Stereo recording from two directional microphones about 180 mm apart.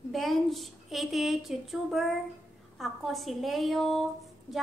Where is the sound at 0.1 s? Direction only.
Centre (ahead or behind).